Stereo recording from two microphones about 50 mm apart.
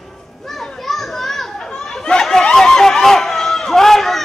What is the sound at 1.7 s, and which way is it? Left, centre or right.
Snicker, centre.